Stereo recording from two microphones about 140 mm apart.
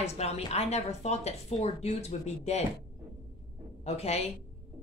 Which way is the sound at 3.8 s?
50° left (ahead or behind).